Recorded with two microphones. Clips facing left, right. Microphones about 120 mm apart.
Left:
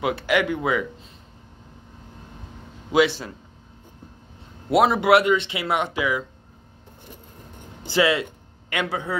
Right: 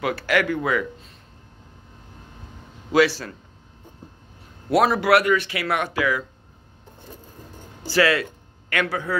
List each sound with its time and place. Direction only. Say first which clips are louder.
0.0 s speech: even; 20° left (ahead or behind)
2.9 s speech: right 1 dB; 20° left (ahead or behind)
4.6 s speech: left 1 dB; 20° left (ahead or behind)
7.8 s a man's voice: right 1 dB; 20° left (ahead or behind)